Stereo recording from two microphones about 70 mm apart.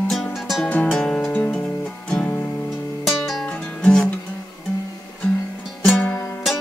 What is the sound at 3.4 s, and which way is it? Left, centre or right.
Music, centre.